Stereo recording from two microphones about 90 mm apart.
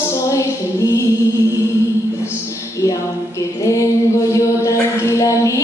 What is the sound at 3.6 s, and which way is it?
Mantra, 40° left (ahead or behind).